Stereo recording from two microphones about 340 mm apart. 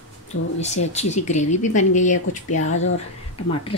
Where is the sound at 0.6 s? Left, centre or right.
Centre.